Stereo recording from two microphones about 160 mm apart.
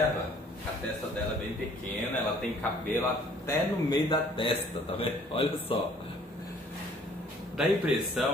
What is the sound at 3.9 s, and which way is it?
A man's voice, 30° left (ahead or behind).